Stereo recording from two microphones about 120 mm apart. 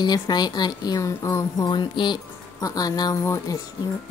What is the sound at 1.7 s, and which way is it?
A woman's voice, 40° left (ahead or behind).